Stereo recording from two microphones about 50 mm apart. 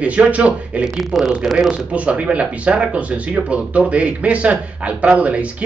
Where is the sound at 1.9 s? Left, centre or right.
Right.